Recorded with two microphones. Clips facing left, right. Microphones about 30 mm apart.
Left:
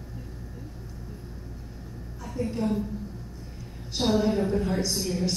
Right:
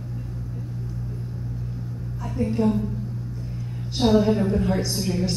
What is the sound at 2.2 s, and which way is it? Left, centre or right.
Speech, centre.